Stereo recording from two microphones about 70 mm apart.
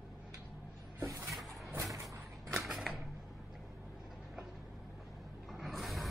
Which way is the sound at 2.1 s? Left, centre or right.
Right.